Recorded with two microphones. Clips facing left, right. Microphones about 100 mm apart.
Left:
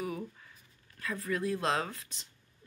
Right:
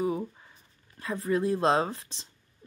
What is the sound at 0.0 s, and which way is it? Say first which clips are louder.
A woman's voice: right 8 dB; 25° right (ahead or behind).